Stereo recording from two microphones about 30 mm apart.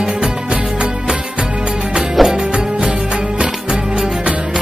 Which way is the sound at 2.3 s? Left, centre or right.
Right.